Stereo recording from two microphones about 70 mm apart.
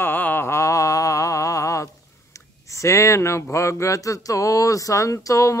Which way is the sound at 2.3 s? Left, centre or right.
Left.